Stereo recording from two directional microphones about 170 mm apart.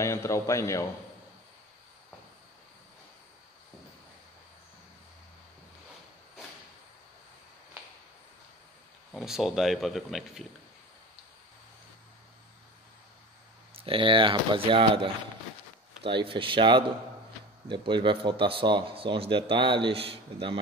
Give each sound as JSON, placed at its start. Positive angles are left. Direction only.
{"t": 0.0, "sound": "a man's voice", "side_deg": 15}
{"t": 9.1, "sound": "speech", "side_deg": 0}
{"t": 13.7, "sound": "speech", "side_deg": -30}